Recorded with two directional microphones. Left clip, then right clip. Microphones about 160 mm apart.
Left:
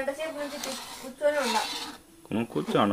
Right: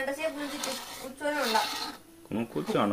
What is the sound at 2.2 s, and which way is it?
Speech, 25° left (ahead or behind).